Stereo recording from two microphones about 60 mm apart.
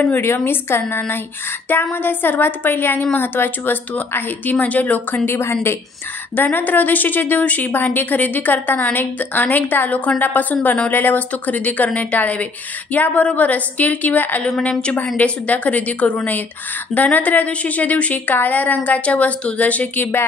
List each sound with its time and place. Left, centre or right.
0.1 s a woman's voice: left
5.4 s a woman's voice: left
6.3 s a woman's voice: left
14.8 s a woman's voice: centre; by 20.2 s left